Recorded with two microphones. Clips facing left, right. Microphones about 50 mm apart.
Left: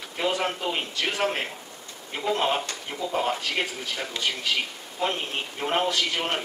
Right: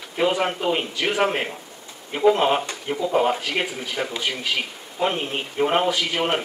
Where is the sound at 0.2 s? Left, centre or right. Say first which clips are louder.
Right 5 dB; centre.